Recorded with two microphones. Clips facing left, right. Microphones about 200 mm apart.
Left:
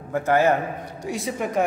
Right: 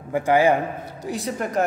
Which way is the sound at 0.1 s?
10° right (ahead or behind).